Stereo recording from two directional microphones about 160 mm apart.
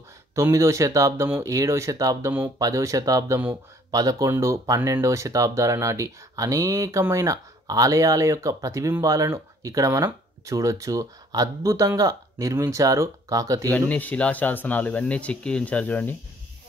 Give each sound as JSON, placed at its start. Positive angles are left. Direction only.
{"t": 0.3, "sound": "speech", "side_deg": -20}
{"t": 13.7, "sound": "speech", "side_deg": 10}